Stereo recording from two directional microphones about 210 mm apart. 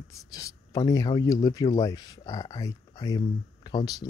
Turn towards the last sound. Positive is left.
turn(degrees=20)  # may be behind; listen again after turning